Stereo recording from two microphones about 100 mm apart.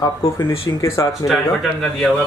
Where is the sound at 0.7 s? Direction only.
30° left (ahead or behind).